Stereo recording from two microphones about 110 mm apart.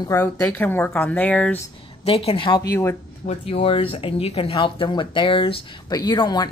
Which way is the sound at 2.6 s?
25° left (ahead or behind).